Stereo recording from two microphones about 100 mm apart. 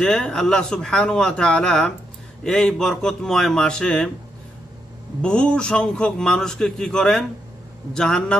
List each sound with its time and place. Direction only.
0.0 s a man's voice: 10° left (ahead or behind)
5.2 s a man's voice: 10° left (ahead or behind)